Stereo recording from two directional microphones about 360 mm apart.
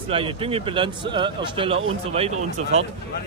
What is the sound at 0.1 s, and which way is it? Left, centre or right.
Speech, centre.